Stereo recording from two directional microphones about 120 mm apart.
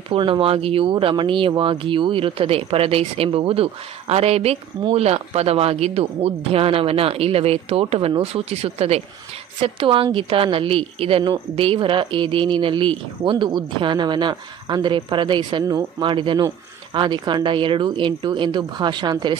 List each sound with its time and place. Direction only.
0.1 s a woman's voice: 50° right (ahead or behind)